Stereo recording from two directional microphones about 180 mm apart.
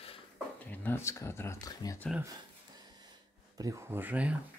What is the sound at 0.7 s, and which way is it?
Speech, 10° left (ahead or behind).